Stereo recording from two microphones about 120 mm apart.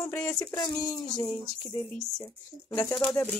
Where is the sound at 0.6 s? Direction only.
40° left (ahead or behind).